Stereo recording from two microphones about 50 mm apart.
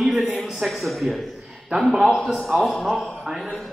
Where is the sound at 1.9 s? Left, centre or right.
Centre.